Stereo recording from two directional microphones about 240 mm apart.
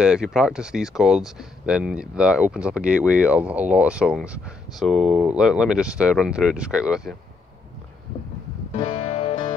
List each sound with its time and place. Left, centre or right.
0.0 s speech: centre
8.7 s music: left